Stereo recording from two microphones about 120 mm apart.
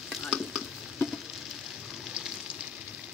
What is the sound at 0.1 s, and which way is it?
Frying, centre (ahead or behind).